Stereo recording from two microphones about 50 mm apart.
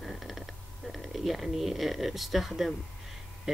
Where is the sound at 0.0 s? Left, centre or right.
Centre.